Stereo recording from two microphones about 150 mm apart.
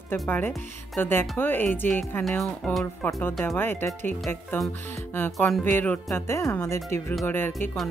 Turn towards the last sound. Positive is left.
turn(degrees=15)  # may be behind; listen again after turning